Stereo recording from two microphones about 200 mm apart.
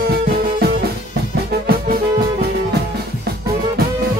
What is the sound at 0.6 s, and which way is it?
Drum, 50° right (ahead or behind).